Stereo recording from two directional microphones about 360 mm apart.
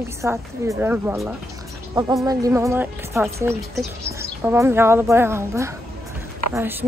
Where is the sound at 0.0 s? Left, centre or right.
Centre.